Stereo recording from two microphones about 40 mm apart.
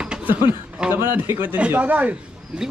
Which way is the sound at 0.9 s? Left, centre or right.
Right.